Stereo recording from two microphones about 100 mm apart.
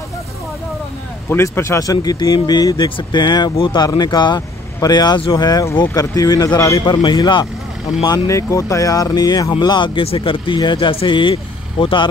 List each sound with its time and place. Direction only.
1.3 s a man's voice: 25° left (ahead or behind)
6.8 s a man's voice: 50° left (ahead or behind)
8.3 s a man's voice: 30° left (ahead or behind); by 10.0 s 50° left (ahead or behind)
10.0 s speech: 65° left (ahead or behind)